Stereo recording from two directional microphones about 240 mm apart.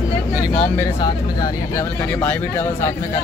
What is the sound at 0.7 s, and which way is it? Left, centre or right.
Speech, centre.